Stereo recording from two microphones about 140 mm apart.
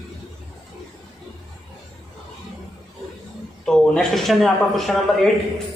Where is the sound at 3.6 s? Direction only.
5° left (ahead or behind).